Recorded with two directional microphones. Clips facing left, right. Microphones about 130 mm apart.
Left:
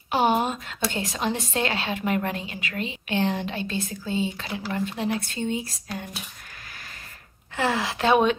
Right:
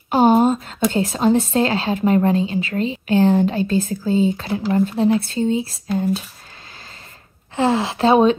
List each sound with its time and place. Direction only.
0.1 s a woman's voice: 40° right (ahead or behind)
7.5 s a woman's voice: 30° right (ahead or behind)